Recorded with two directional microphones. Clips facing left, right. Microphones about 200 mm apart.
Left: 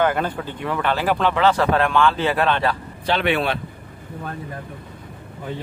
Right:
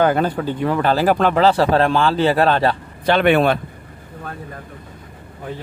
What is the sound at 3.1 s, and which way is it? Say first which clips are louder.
Speech: right 6 dB; 50° right (ahead or behind).